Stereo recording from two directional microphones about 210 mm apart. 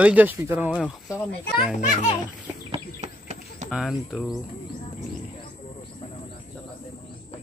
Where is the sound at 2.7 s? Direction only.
35° right (ahead or behind).